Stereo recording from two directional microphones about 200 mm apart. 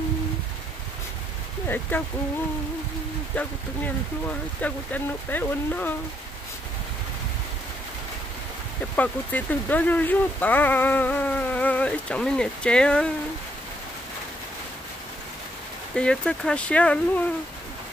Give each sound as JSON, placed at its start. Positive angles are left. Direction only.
{"t": 1.7, "sound": "speech", "side_deg": 10}
{"t": 3.3, "sound": "speech", "side_deg": 10}
{"t": 8.9, "sound": "speech", "side_deg": 10}
{"t": 16.0, "sound": "speech", "side_deg": 5}